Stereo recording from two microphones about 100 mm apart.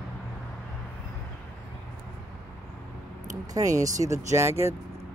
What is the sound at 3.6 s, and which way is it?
Speech, 35° right (ahead or behind).